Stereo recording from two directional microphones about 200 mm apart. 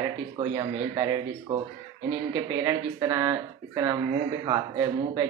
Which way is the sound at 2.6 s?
15° right (ahead or behind).